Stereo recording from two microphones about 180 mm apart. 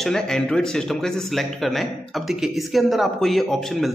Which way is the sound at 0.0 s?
5° left (ahead or behind).